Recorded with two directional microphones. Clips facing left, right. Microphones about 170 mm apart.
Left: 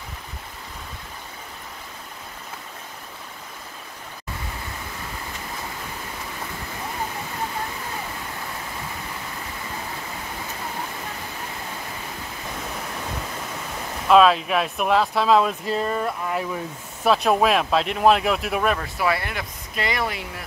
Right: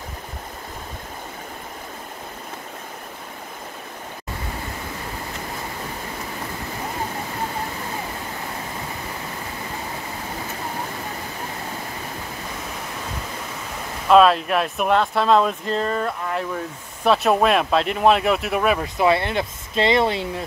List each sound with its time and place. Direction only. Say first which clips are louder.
14.0 s speech: right 1 dB; centre (ahead or behind)
18.8 s speech: right 5 dB; 25° right (ahead or behind)